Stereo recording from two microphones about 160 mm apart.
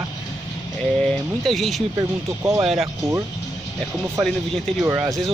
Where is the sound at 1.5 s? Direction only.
Centre (ahead or behind).